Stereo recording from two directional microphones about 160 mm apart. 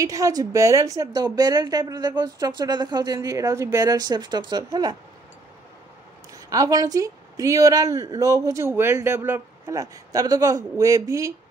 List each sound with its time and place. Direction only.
0.0 s a woman's voice: 20° right (ahead or behind)
6.3 s a woman's voice: 20° right (ahead or behind)